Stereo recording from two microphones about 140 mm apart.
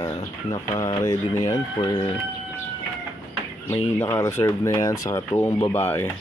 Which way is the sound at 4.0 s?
15° left (ahead or behind).